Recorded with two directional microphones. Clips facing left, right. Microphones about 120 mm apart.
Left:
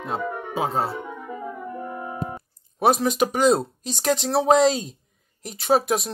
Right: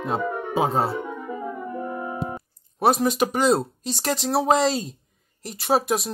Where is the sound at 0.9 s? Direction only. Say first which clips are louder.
Right 3 dB; 25° right (ahead or behind).